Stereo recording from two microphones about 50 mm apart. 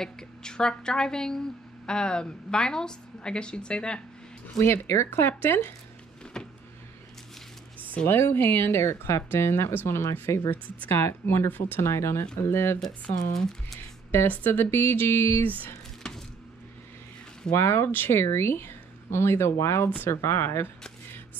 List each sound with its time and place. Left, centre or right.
0.0 s a woman's voice: centre
4.6 s speech: left
6.4 s power windows: centre
8.1 s speech: left
11.8 s speech: left
13.4 s speech: centre
13.7 s speech: left
17.5 s speech: left